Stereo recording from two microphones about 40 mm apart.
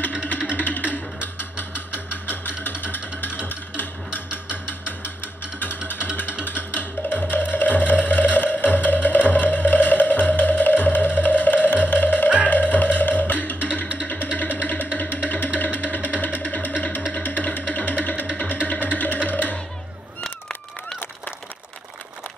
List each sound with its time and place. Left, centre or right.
0.5 s music: left
6.4 s music: left